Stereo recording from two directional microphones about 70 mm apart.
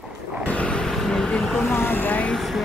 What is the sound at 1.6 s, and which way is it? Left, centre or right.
Speech, left.